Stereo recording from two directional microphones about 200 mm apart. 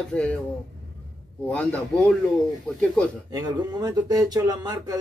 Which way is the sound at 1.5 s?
5° left (ahead or behind).